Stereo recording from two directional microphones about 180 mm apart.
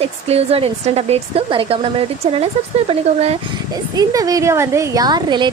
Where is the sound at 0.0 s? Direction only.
35° right (ahead or behind).